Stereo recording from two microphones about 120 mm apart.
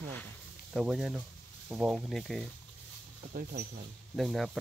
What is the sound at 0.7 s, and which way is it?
Speech, 5° right (ahead or behind).